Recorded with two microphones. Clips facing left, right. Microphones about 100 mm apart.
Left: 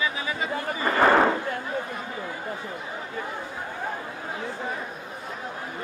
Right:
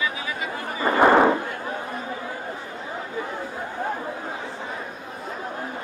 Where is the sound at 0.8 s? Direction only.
15° right (ahead or behind).